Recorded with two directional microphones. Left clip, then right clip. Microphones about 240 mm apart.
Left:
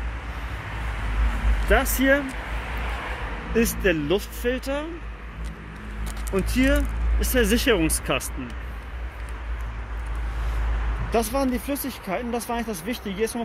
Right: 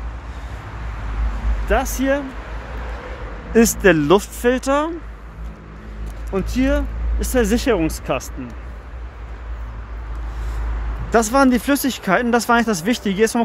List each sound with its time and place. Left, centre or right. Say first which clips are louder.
1.7 s speech: right 1 dB; centre
3.5 s speech: right 9 dB; right
6.3 s speech: right 3 dB; centre
11.1 s speech: right 9 dB; right